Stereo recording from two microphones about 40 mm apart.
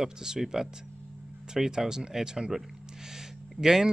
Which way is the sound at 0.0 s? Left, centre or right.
Centre.